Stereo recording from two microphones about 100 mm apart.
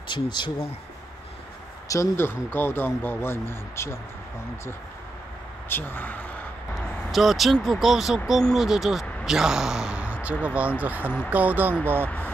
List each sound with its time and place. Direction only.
0.1 s speech: 50° left (ahead or behind)
1.9 s speech: 25° left (ahead or behind)
5.7 s speech: 20° left (ahead or behind)
6.7 s a man's voice: centre (ahead or behind); by 12.1 s 20° right (ahead or behind)